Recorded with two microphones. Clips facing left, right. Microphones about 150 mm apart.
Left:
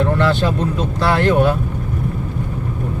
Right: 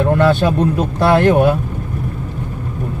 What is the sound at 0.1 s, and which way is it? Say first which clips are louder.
Speech: right 4 dB; 55° right (ahead or behind).